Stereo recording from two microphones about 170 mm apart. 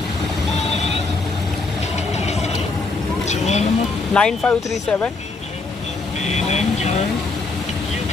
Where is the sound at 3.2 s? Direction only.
40° left (ahead or behind).